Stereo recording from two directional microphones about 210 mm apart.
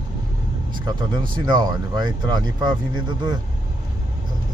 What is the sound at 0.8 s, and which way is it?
Speech, 20° right (ahead or behind).